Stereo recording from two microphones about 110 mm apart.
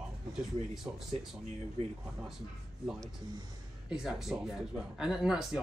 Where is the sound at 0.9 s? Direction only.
20° right (ahead or behind).